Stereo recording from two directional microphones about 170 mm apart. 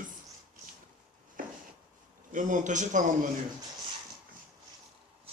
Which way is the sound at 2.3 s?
45° right (ahead or behind).